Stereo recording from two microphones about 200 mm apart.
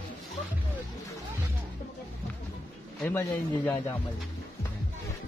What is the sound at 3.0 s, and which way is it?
Speech, 10° left (ahead or behind).